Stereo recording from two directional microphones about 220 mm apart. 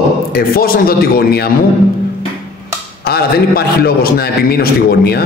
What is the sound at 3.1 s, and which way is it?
A man's voice, 45° left (ahead or behind).